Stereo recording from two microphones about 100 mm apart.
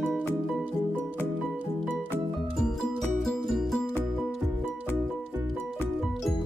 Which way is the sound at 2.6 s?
5° left (ahead or behind).